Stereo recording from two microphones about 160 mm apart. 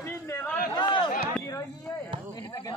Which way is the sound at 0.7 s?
30° left (ahead or behind).